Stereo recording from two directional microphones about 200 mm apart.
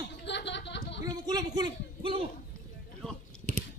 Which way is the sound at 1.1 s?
20° right (ahead or behind).